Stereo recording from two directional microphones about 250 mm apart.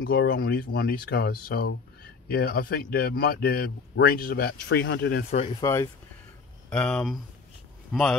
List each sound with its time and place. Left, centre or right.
0.0 s speech: left
5.4 s speech: centre